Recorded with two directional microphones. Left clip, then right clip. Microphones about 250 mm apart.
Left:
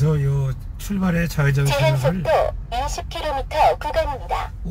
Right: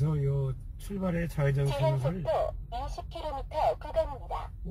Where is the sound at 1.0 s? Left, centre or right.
Right.